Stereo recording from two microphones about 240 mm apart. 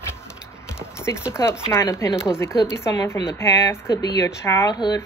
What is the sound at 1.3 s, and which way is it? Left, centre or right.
A woman's voice, centre.